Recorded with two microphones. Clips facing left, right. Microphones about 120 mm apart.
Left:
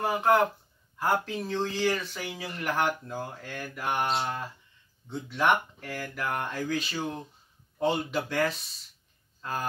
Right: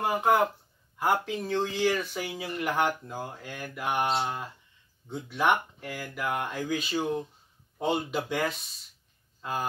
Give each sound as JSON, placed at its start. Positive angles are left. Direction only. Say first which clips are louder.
{"t": 0.0, "sound": "speech", "louder": "even", "side_deg": -10}
{"t": 5.1, "sound": "a man's voice", "louder": "even", "side_deg": -15}